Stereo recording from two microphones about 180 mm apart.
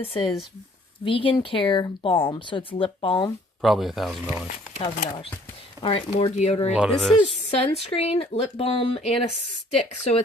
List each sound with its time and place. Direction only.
0.0 s speech: 30° left (ahead or behind)
3.6 s speech: centre (ahead or behind)
4.8 s speech: 25° left (ahead or behind)
6.7 s speech: 5° right (ahead or behind)
7.4 s speech: 35° left (ahead or behind)